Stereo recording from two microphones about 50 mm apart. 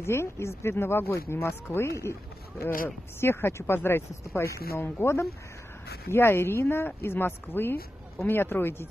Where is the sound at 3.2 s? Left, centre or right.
Left.